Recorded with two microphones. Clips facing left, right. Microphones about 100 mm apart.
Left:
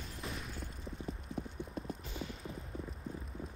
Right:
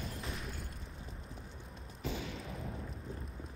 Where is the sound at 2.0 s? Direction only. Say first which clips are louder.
Right 3 dB; 90° right.